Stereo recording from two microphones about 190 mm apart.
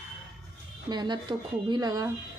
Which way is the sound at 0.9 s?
25° right (ahead or behind).